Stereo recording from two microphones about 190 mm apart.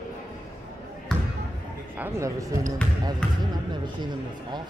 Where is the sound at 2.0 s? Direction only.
15° right (ahead or behind).